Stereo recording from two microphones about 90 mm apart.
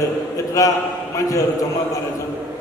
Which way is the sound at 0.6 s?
40° left (ahead or behind).